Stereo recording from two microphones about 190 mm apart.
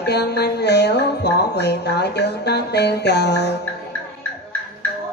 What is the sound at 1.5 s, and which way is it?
Speech, 60° left (ahead or behind).